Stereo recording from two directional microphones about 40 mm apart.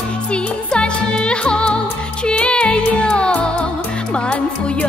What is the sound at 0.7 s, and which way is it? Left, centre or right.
Music, left.